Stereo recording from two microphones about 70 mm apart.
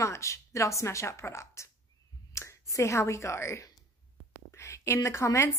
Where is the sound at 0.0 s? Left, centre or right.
Left.